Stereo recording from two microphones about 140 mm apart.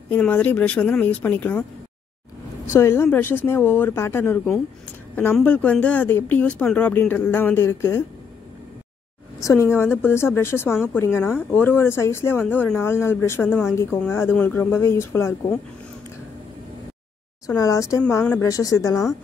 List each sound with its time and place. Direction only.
0.1 s speech: 10° left (ahead or behind)
9.4 s speech: 20° left (ahead or behind)
17.6 s speech: 25° left (ahead or behind)